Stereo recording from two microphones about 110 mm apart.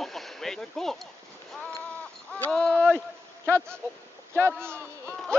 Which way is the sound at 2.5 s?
5° left (ahead or behind).